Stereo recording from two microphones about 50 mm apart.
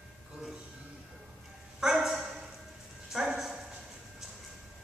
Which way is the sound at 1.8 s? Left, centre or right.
Centre.